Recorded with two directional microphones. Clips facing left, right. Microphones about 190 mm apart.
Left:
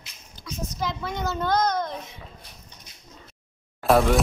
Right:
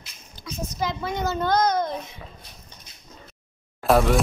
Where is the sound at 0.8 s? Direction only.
Centre (ahead or behind).